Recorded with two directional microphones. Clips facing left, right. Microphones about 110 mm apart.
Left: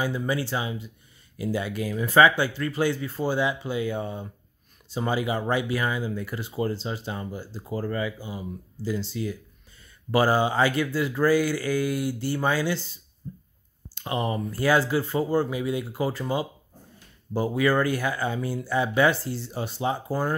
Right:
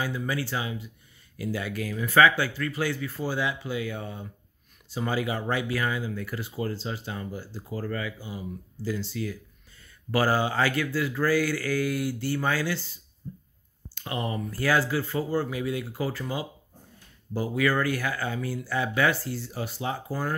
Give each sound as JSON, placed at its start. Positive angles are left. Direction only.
{"t": 0.0, "sound": "speech", "side_deg": 25}
{"t": 13.2, "sound": "a sound", "side_deg": 15}
{"t": 13.9, "sound": "speech", "side_deg": 25}